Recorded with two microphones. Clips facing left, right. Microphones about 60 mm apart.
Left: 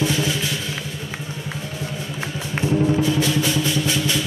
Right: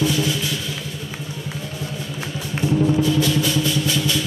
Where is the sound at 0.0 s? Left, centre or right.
Left.